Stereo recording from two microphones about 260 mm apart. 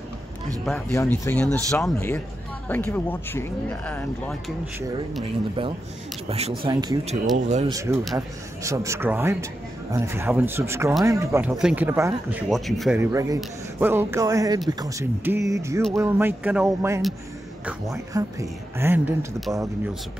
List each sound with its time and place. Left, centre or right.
0.7 s speech: centre
6.2 s speech: right
7.3 s speech: right
7.7 s a man's voice: centre